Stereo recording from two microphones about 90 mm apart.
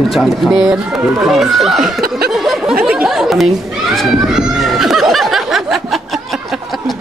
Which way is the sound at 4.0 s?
Centre (ahead or behind).